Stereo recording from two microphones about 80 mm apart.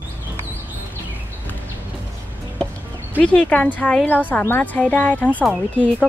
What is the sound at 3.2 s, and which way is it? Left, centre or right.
A woman's voice, centre.